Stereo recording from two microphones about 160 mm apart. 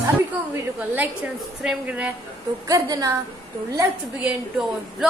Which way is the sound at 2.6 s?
20° right (ahead or behind).